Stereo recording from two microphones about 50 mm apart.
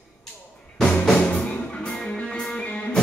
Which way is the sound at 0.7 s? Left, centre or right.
Centre.